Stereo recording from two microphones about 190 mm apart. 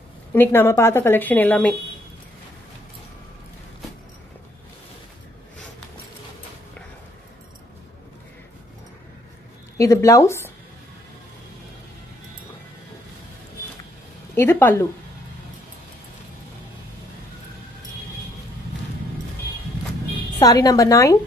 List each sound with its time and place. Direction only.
0.3 s a woman's voice: 10° left (ahead or behind)
9.8 s a woman's voice: 15° left (ahead or behind)
14.3 s a woman's voice: 15° left (ahead or behind)
20.3 s a woman's voice: 20° left (ahead or behind)